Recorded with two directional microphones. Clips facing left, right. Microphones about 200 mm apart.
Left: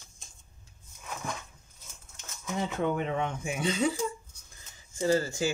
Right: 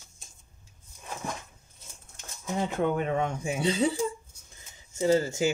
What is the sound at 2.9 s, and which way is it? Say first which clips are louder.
Speech: right 3 dB; 45° right (ahead or behind).